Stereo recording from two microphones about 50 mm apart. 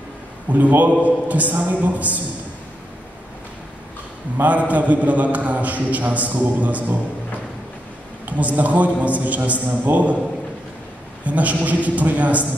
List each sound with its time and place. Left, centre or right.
0.5 s a man's voice: right
4.4 s a man's voice: right
8.3 s a man's voice: right
11.2 s a man's voice: right